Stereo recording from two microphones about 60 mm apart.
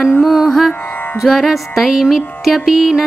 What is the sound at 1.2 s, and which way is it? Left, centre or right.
Music, centre.